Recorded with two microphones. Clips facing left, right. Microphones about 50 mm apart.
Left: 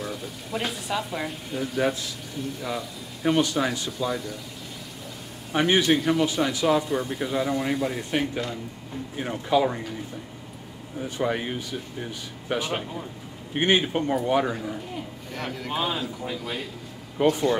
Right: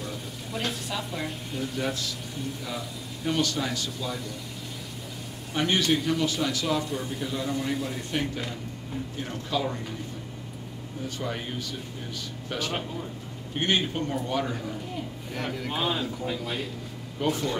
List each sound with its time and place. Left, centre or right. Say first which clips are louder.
0.0 s a sound: left 3 dB; centre
0.6 s a man's voice: left 3 dB; centre
1.8 s a man's voice: left 7 dB; centre
2.3 s a man's voice: left 6 dB; centre
3.3 s a man's voice: left 5 dB; centre
4.1 s a man's voice: left 5 dB; centre
5.5 s a man's voice: left 4 dB; centre
9.1 s speech: left 8 dB; left
11.0 s a man's voice: left 6 dB; left
15.3 s a man's voice: left 1 dB; centre
17.2 s speech: left 6 dB; left